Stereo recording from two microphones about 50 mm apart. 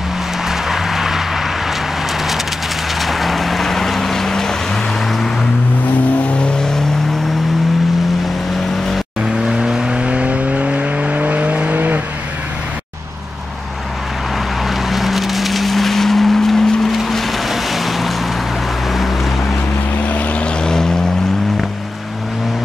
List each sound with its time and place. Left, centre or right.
0.5 s vehicle: centre
3.0 s vehicle: centre
9.2 s vehicle: centre; by 12.0 s right
14.7 s vehicle: centre
18.9 s boat: centre
20.1 s vehicle: left
20.6 s vehicle: centre